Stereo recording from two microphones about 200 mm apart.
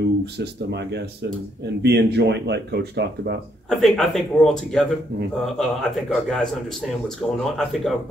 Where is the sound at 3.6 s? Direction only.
Centre (ahead or behind).